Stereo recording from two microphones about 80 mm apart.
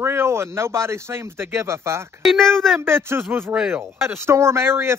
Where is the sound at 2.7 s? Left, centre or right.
Right.